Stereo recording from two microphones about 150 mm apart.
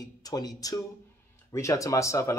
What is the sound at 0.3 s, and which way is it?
Speech, 25° left (ahead or behind).